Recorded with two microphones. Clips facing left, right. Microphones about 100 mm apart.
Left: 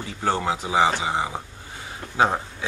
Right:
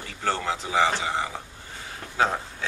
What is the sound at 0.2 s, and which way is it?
Speech, 15° left (ahead or behind).